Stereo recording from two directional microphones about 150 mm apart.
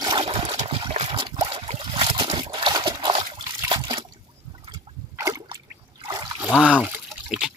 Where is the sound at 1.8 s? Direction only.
35° right (ahead or behind).